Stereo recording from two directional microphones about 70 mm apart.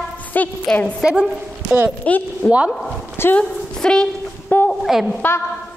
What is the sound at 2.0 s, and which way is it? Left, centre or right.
A woman's voice, left.